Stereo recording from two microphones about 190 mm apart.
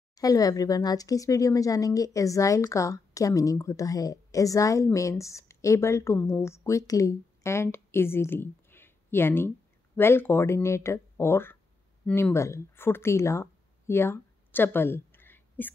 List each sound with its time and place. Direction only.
0.1 s speech: 20° left (ahead or behind)